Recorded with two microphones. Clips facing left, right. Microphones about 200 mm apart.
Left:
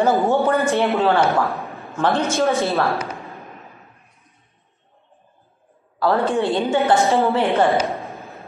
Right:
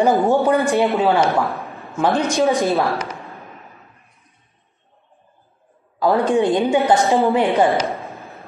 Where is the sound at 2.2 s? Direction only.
15° right (ahead or behind).